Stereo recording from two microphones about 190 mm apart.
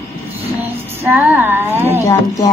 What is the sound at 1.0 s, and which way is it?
Speech, 10° right (ahead or behind).